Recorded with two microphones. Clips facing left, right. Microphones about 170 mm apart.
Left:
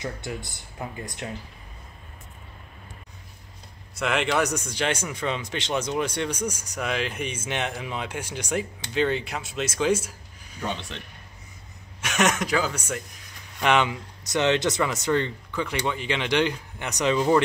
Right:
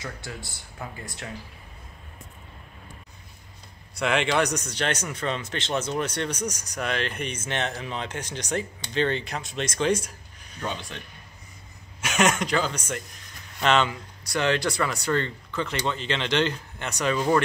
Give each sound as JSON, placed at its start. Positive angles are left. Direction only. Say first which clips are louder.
{"t": 0.0, "sound": "speech", "louder": "left 4 dB", "side_deg": 20}
{"t": 3.9, "sound": "speech", "louder": "right 1 dB", "side_deg": 0}
{"t": 12.0, "sound": "speech", "louder": "right 1 dB", "side_deg": 0}